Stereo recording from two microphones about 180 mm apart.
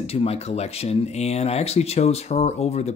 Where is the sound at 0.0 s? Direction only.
35° left (ahead or behind).